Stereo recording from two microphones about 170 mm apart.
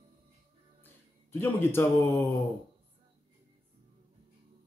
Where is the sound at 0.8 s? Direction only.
15° left (ahead or behind).